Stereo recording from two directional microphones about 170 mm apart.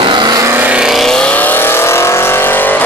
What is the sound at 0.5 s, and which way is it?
Vehicle, 5° right (ahead or behind).